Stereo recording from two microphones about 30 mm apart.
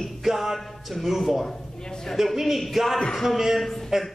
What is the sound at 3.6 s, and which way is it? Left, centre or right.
Speech, centre.